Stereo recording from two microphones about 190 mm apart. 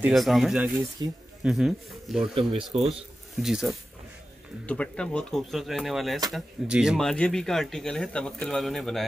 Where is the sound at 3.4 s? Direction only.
5° right (ahead or behind).